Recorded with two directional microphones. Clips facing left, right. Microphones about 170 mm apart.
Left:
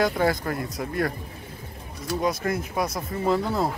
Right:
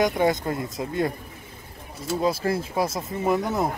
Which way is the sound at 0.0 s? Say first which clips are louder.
Right 1 dB; 20° right (ahead or behind).